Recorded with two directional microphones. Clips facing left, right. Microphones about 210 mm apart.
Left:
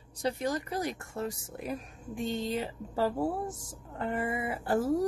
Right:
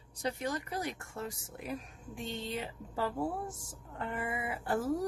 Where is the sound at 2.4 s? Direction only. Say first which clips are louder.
Left 6 dB; 35° left (ahead or behind).